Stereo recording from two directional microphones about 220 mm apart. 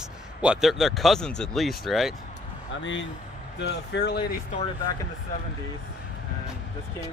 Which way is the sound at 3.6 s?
50° left (ahead or behind).